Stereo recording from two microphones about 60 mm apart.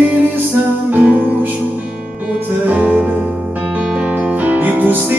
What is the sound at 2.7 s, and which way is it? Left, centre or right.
Music, right.